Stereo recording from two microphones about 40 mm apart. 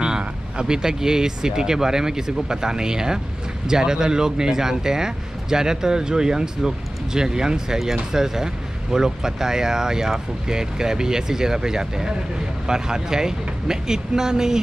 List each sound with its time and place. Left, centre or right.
0.6 s speech: centre